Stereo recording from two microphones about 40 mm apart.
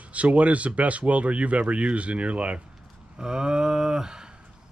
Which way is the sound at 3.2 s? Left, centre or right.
Centre.